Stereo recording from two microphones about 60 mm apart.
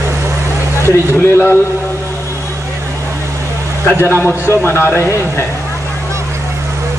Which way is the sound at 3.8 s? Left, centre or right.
Left.